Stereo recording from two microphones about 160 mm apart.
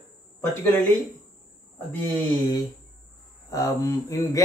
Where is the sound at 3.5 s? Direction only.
20° left (ahead or behind).